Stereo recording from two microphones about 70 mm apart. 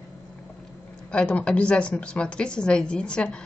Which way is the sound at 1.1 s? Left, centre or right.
Centre.